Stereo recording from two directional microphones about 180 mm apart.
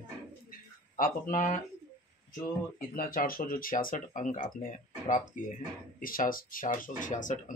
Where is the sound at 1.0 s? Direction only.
50° left (ahead or behind).